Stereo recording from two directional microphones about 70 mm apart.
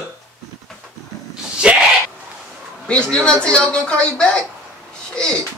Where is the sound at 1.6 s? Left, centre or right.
Centre.